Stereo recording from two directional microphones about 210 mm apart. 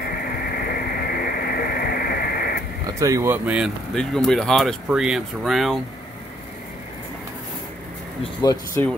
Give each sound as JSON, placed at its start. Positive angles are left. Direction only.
{"t": 0.2, "sound": "a sound", "side_deg": 45}
{"t": 2.9, "sound": "speech", "side_deg": -15}
{"t": 8.2, "sound": "speech", "side_deg": 20}